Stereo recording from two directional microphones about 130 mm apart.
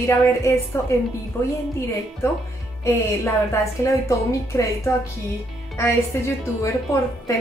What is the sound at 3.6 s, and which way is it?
A woman's voice, 25° left (ahead or behind).